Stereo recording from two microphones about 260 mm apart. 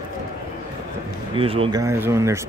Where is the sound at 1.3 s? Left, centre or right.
Right.